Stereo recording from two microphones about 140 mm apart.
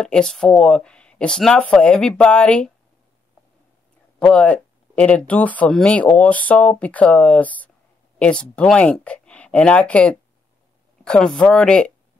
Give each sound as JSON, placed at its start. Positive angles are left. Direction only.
{"t": 0.0, "sound": "speech", "side_deg": 5}
{"t": 4.2, "sound": "speech", "side_deg": 5}